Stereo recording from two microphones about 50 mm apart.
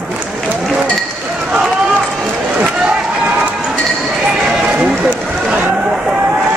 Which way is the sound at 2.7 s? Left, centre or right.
Right.